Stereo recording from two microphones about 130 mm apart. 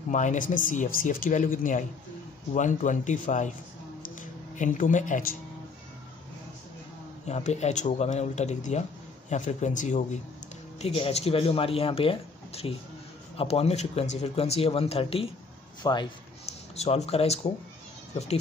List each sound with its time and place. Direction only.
0.1 s speech: 70° left (ahead or behind)
2.5 s speech: 70° left (ahead or behind)
4.1 s speech: 90° left
7.2 s speech: 60° left (ahead or behind)
10.8 s speech: 50° left (ahead or behind)
15.8 s speech: 35° left (ahead or behind)
16.4 s speech: 55° left (ahead or behind)